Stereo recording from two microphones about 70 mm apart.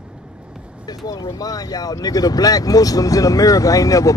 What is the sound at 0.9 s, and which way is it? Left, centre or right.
Speech, left.